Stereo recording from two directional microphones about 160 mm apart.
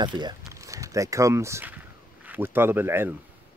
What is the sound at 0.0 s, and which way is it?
Speech, 30° right (ahead or behind).